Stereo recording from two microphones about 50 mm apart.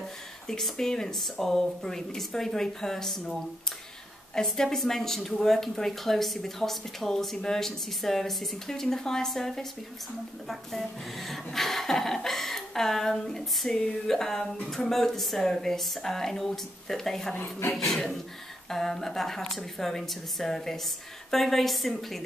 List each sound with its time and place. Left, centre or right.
0.5 s speech: centre
4.4 s speech: centre
17.4 s speech: left
17.7 s a woman's voice: centre